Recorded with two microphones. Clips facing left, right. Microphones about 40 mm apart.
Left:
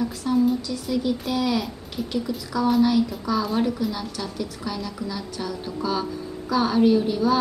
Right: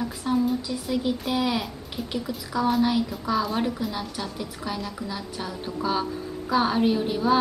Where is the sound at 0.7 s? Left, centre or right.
Centre.